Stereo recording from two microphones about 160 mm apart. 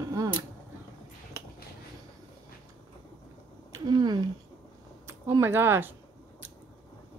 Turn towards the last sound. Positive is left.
turn(degrees=-15)  # may be behind; listen again after turning